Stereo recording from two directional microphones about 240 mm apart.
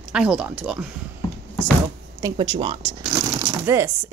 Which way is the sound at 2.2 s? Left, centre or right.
Right.